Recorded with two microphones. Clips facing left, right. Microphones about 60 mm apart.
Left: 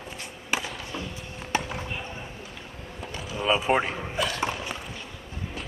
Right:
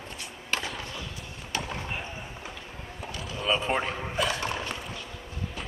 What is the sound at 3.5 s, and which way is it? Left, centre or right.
Speech, centre.